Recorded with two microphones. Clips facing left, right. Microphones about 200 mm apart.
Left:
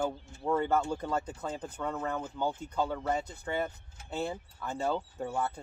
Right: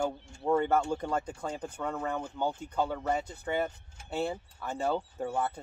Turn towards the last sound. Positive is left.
turn(degrees=-10)  # may be behind; listen again after turning